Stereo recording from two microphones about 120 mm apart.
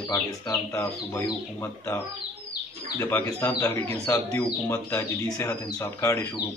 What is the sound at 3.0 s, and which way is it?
Speech, 15° left (ahead or behind).